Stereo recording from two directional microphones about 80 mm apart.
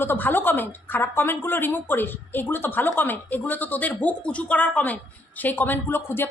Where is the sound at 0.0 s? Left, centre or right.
Left.